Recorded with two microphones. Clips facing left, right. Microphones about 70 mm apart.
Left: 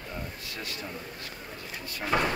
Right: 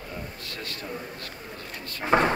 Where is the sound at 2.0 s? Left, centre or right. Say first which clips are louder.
Right 6 dB; right.